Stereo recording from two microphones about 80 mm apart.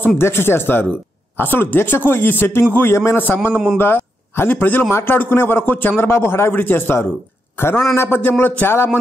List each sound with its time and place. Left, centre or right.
0.2 s a man's voice: left